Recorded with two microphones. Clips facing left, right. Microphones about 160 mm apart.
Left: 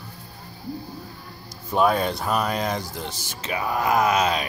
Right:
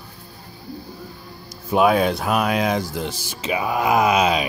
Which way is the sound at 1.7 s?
10° right (ahead or behind).